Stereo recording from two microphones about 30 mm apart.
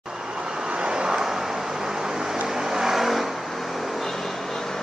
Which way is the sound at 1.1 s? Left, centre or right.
Centre.